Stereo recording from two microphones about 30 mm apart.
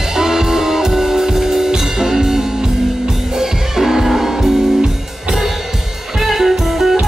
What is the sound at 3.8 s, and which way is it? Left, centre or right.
Music, centre.